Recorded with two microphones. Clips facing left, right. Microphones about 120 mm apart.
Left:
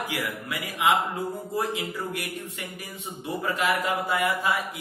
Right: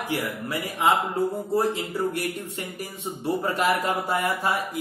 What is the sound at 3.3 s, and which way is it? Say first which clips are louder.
A man's voice: right 3 dB; 35° right (ahead or behind).